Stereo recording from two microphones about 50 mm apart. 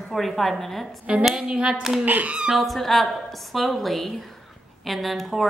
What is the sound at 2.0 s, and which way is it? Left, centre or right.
Speech, right.